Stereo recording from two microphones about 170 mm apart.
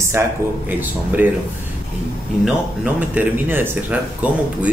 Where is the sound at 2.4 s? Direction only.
10° right (ahead or behind).